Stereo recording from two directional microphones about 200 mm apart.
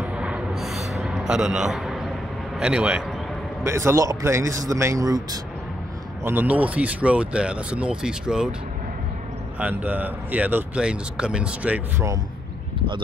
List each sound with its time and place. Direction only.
0.0 s a sound: 5° right (ahead or behind)
2.6 s speech: 5° right (ahead or behind)
9.6 s speech: 10° right (ahead or behind)